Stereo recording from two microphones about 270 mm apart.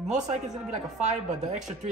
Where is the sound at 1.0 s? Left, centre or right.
Right.